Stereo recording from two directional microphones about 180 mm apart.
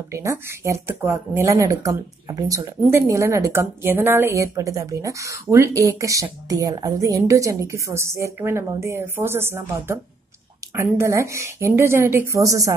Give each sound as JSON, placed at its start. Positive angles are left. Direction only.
{"t": 0.1, "sound": "speech", "side_deg": -15}